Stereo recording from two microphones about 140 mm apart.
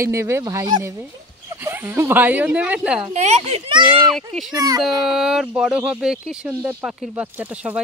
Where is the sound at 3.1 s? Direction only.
55° right (ahead or behind).